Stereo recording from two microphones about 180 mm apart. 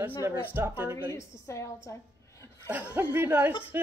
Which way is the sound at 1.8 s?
15° left (ahead or behind).